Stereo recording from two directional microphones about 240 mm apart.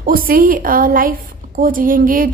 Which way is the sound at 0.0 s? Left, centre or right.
Right.